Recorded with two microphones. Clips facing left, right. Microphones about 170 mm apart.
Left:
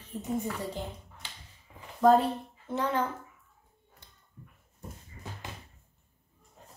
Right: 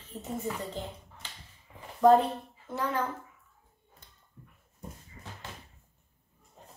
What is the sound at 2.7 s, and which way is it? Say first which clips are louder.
Speech: left 2 dB; 20° left (ahead or behind).